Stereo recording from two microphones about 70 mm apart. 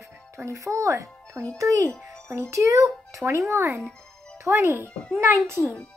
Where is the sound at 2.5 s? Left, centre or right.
Right.